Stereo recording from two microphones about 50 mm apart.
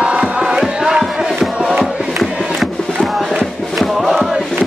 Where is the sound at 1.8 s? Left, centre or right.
Centre.